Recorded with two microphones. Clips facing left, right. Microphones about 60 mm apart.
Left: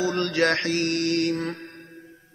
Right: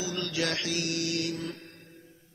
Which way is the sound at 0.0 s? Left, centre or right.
Left.